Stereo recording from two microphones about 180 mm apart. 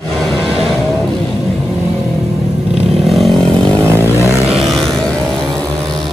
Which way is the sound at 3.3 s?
30° right (ahead or behind).